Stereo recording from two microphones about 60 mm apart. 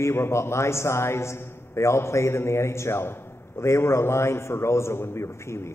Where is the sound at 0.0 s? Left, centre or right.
Left.